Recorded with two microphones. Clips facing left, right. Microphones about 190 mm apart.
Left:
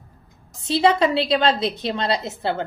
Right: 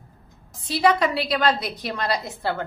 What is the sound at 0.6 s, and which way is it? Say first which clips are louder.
A woman's voice: left 2 dB; 25° left (ahead or behind).